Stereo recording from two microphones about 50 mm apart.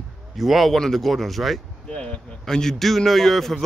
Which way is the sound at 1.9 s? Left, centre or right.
Left.